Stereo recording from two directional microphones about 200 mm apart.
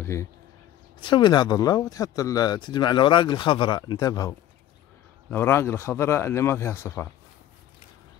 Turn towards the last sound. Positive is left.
turn(degrees=15)  # may be behind; listen again after turning